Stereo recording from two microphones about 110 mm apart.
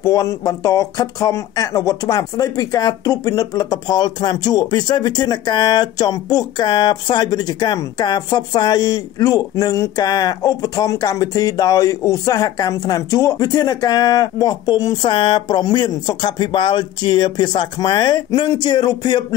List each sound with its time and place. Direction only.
0.0 s speech: 30° left (ahead or behind)